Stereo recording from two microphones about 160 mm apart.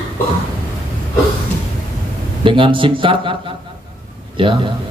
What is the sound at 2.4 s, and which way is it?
A man's voice, 30° right (ahead or behind).